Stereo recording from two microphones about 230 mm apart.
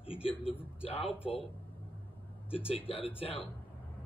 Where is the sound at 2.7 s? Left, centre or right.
Left.